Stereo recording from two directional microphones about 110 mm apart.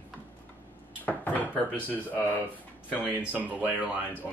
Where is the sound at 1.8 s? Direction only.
15° left (ahead or behind).